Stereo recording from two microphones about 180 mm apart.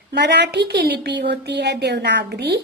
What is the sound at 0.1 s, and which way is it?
A woman's voice, 70° right (ahead or behind).